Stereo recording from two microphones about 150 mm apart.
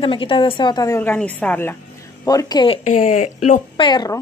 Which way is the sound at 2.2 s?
25° left (ahead or behind).